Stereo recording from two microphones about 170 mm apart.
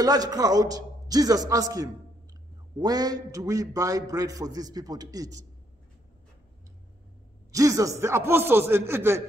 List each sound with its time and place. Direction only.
0.0 s a man's voice: 20° right (ahead or behind)
7.5 s a man's voice: 20° right (ahead or behind)